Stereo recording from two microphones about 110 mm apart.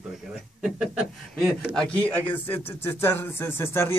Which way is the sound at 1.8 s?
10° left (ahead or behind).